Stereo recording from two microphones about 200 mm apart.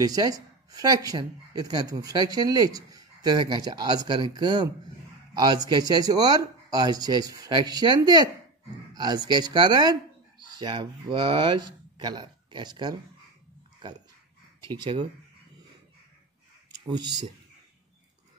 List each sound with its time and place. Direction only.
0.0 s a man's voice: 20° right (ahead or behind)
14.6 s speech: 25° right (ahead or behind)
16.7 s speech: 20° right (ahead or behind)